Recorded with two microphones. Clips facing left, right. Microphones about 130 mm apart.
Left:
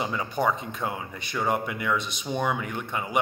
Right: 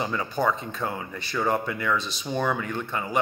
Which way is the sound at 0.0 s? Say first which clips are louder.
Right 1 dB; 15° left (ahead or behind).